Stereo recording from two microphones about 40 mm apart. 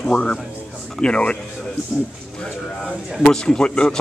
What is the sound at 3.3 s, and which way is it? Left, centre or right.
Speech, centre.